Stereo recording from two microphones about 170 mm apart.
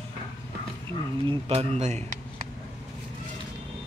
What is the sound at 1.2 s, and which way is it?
Speech, 35° right (ahead or behind).